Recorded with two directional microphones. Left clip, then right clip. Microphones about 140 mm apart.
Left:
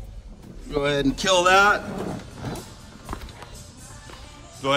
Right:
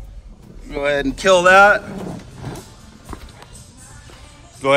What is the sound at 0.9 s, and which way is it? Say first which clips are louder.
Speech: right 8 dB; 30° left (ahead or behind).